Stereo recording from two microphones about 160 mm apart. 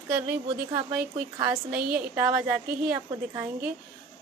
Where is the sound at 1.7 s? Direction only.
65° right (ahead or behind).